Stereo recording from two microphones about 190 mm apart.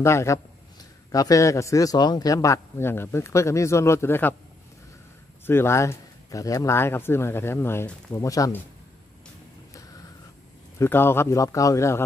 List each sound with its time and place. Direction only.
0.0 s a man's voice: 15° left (ahead or behind)
5.5 s a man's voice: 15° left (ahead or behind)
10.8 s a man's voice: 10° left (ahead or behind)